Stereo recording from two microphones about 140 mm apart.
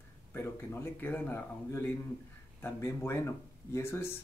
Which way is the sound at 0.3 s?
15° left (ahead or behind).